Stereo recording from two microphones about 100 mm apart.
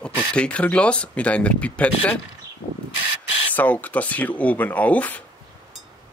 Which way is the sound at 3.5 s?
15° left (ahead or behind).